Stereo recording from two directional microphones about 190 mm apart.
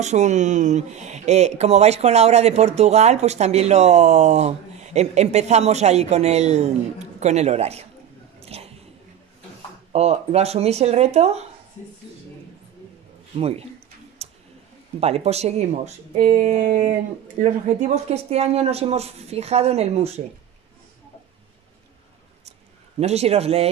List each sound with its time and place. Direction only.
0.0 s speech: 40° right (ahead or behind)
8.4 s a sound: 30° right (ahead or behind)
9.9 s speech: 35° right (ahead or behind)
13.4 s speech: 30° right (ahead or behind)
14.2 s tick-tock: 35° right (ahead or behind)
15.0 s speech: 30° right (ahead or behind)
17.4 s speech: 35° right (ahead or behind)
22.9 s speech: 35° right (ahead or behind)